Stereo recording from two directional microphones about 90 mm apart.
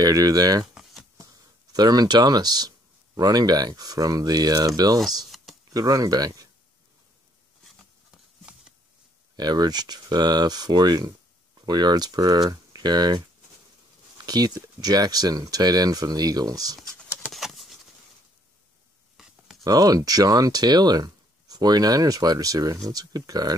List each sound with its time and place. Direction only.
0.0 s speech: 45° right (ahead or behind)
1.1 s a sound: 45° right (ahead or behind)
3.2 s speech: 45° right (ahead or behind)
5.3 s a sound: centre (ahead or behind)
5.7 s speech: 45° right (ahead or behind)
9.4 s speech: 50° right (ahead or behind)
14.2 s speech: 45° right (ahead or behind)
17.3 s a sound: centre (ahead or behind)
19.6 s speech: 40° right (ahead or behind)